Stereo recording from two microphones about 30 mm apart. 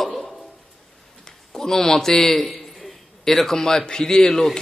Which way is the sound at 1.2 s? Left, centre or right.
Centre.